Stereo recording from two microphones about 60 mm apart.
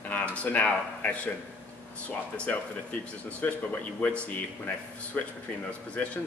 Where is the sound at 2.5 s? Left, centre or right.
Left.